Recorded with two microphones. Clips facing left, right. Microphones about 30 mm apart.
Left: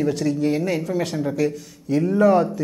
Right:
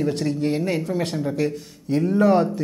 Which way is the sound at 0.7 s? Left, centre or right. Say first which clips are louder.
Left 1 dB; centre.